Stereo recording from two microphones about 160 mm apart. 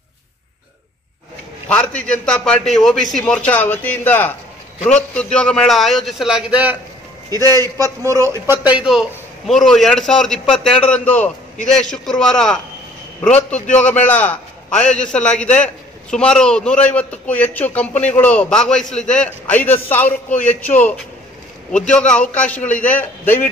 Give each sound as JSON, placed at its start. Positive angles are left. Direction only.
{"t": 1.7, "sound": "a man's voice", "side_deg": 10}
{"t": 7.2, "sound": "a man's voice", "side_deg": -25}
{"t": 8.7, "sound": "a man's voice", "side_deg": -5}